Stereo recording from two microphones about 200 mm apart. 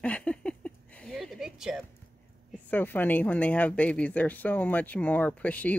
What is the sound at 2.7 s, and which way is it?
Speech, 10° left (ahead or behind).